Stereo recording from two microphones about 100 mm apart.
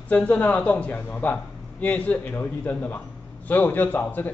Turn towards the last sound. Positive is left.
turn(degrees=20)  # may be behind; listen again after turning